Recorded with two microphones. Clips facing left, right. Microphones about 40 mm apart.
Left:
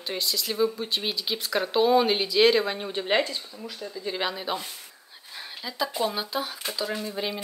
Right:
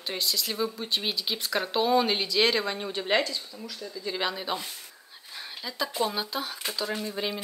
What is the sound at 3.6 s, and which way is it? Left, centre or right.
Speech, left.